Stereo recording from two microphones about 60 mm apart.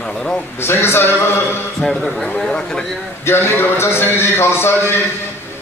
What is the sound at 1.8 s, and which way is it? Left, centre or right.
Speech, centre.